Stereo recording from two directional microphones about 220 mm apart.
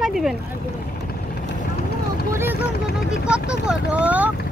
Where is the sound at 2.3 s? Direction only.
10° right (ahead or behind).